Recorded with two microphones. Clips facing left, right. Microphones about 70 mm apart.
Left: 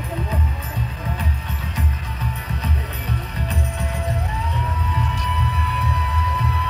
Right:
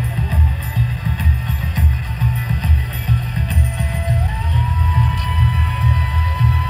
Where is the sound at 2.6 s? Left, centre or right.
Centre.